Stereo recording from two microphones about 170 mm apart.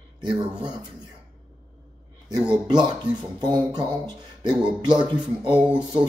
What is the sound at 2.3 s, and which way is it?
Speech, 25° right (ahead or behind).